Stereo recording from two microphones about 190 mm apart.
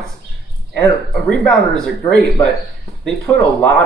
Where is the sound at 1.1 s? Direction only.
Centre (ahead or behind).